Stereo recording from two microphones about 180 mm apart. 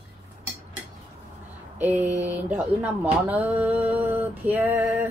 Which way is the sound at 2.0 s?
40° right (ahead or behind).